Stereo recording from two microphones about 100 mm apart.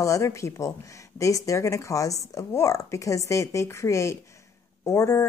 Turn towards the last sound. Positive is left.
turn(degrees=30)  # may be behind; listen again after turning